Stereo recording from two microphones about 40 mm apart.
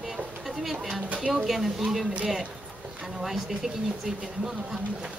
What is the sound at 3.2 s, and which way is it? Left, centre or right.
Speech, centre.